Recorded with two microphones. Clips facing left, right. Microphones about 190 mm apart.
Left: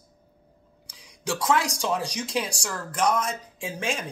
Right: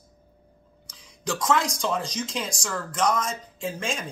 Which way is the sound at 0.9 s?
10° left (ahead or behind).